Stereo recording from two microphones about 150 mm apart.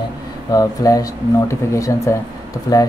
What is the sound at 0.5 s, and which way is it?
Speech, 25° left (ahead or behind).